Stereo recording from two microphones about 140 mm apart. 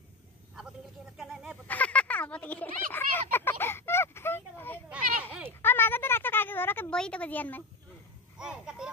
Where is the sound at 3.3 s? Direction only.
15° left (ahead or behind).